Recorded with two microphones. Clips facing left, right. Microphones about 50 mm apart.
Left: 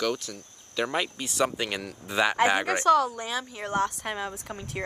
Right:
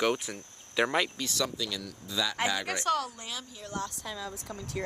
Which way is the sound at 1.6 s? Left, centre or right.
Left.